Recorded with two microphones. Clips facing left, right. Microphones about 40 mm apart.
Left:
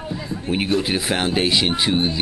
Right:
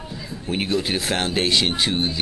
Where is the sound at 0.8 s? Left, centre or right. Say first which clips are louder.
Left 2 dB; centre.